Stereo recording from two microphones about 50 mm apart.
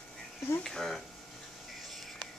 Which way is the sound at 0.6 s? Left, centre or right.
Centre.